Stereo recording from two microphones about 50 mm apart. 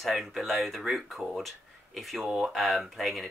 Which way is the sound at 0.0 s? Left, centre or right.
Centre.